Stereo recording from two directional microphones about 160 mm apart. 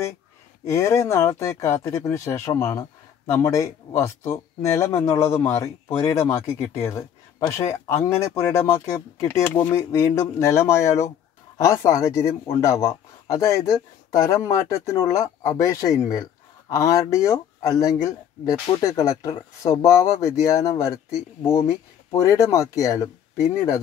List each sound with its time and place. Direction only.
0.7 s speech: 20° left (ahead or behind)